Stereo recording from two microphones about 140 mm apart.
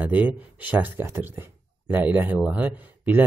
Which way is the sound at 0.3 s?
10° right (ahead or behind).